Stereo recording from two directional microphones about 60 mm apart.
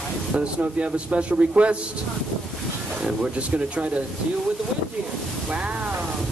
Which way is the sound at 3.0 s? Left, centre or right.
Centre.